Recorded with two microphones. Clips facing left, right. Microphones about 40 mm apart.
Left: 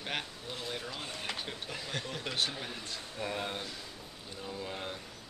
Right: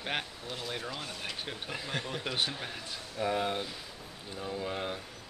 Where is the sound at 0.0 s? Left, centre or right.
Centre.